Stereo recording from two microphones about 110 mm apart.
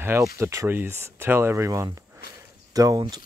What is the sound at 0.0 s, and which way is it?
Speech, 25° right (ahead or behind).